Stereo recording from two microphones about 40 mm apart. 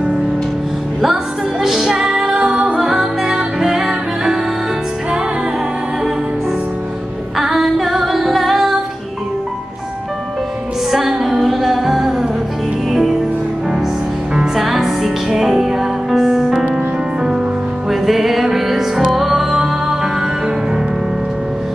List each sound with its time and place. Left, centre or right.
1.0 s music: centre
2.0 s music: right
7.3 s female singing: centre
7.7 s music: centre
10.9 s music: centre
14.3 s music: centre